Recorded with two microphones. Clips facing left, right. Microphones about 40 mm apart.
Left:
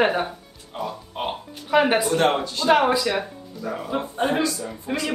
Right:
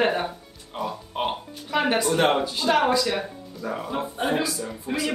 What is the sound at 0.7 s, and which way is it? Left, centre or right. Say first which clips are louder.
Music: even; centre.